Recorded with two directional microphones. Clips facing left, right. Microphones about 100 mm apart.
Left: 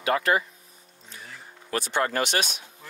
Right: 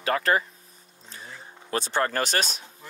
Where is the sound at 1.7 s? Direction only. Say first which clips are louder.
Even; 35° right (ahead or behind).